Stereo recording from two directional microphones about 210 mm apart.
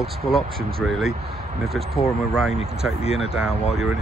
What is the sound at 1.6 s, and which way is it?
Speech, centre (ahead or behind).